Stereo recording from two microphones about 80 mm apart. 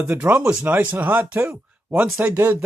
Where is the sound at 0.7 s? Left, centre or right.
Right.